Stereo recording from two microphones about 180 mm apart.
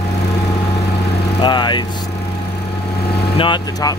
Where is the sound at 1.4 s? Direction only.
25° left (ahead or behind).